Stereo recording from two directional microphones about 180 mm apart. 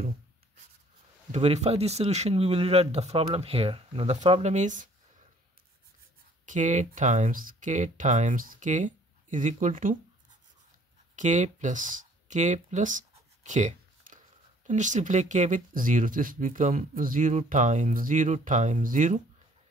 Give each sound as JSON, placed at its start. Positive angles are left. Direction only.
{"t": 1.3, "sound": "speech", "side_deg": -35}
{"t": 6.4, "sound": "speech", "side_deg": -45}
{"t": 11.1, "sound": "speech", "side_deg": -40}